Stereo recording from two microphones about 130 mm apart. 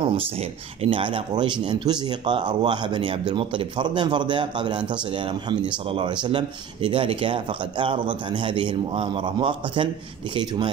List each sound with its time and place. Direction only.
0.0 s speech: 40° right (ahead or behind)